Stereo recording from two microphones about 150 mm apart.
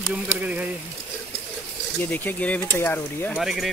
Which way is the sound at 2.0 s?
10° left (ahead or behind).